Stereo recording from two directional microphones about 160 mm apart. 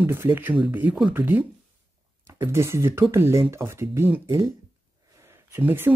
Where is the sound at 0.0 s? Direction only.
15° right (ahead or behind).